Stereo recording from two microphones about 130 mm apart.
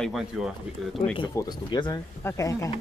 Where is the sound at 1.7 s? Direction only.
35° left (ahead or behind).